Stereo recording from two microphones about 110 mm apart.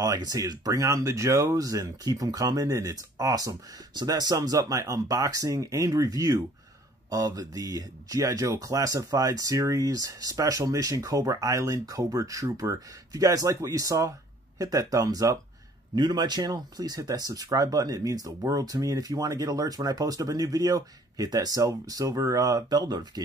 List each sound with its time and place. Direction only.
0.0 s speech: 35° right (ahead or behind)